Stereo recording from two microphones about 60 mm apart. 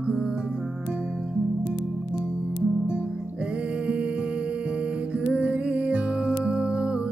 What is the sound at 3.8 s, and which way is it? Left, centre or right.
Music, centre.